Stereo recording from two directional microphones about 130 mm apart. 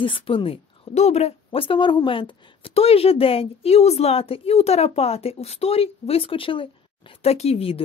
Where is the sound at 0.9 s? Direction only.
55° left (ahead or behind).